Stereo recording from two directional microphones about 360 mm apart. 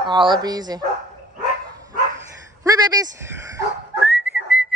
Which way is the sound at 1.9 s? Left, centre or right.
Centre.